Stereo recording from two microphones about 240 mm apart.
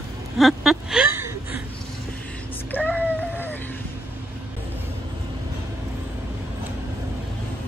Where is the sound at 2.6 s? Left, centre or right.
Centre.